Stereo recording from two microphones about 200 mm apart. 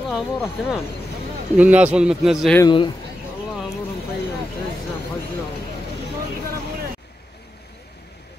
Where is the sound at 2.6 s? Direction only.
25° left (ahead or behind).